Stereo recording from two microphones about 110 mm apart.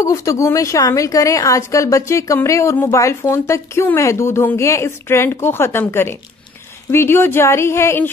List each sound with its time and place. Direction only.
0.0 s a woman's voice: 30° left (ahead or behind)